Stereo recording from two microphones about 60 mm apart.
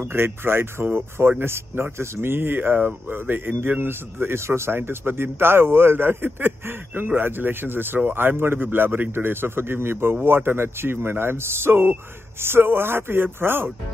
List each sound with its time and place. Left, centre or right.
0.0 s a man's voice: right